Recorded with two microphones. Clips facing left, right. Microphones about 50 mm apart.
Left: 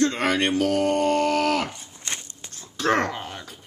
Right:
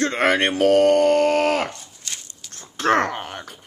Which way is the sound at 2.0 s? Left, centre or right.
Left.